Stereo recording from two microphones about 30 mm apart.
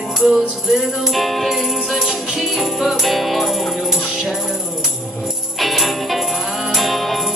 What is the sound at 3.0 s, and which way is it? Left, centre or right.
Music, centre.